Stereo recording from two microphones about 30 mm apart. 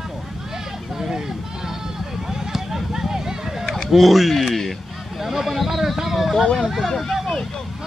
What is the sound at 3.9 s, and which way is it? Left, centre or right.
Speech, centre.